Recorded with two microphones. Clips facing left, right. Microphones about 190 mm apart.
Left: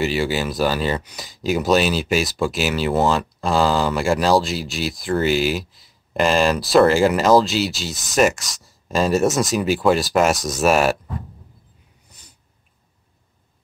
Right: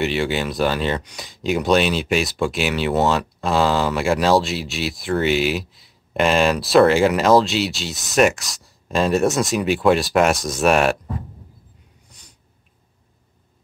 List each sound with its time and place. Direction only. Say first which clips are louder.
0.0 s speech: even; centre (ahead or behind)